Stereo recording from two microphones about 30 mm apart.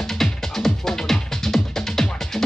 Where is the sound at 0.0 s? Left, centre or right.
Centre.